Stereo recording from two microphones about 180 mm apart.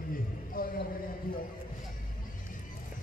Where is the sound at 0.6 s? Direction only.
50° left (ahead or behind).